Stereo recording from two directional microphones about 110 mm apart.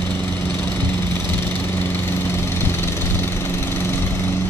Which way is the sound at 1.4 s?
20° left (ahead or behind).